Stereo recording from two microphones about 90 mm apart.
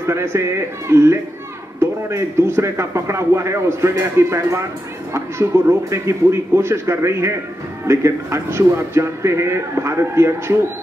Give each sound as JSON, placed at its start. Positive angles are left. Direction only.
{"t": 0.0, "sound": "a man's voice", "side_deg": -30}